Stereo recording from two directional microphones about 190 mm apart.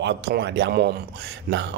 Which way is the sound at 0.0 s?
65° right (ahead or behind).